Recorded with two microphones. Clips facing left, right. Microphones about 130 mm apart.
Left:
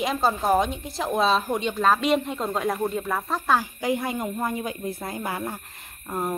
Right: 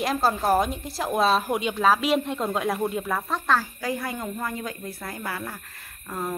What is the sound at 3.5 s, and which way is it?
A woman's voice, 15° left (ahead or behind).